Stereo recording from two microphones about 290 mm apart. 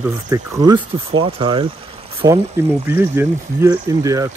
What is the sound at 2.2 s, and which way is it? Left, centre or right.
Speech, centre.